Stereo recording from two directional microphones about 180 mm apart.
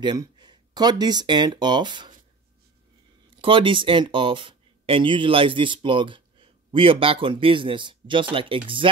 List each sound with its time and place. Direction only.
0.0 s speech: 25° right (ahead or behind)
3.3 s speech: 30° right (ahead or behind)